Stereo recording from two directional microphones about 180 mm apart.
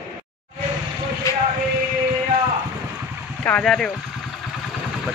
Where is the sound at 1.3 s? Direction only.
20° left (ahead or behind).